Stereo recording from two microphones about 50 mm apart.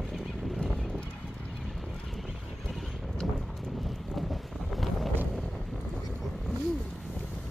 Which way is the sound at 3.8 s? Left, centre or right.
Centre.